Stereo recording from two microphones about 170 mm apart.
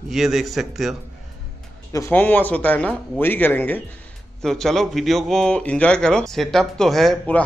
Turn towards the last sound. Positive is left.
turn(degrees=5)  # may be behind; listen again after turning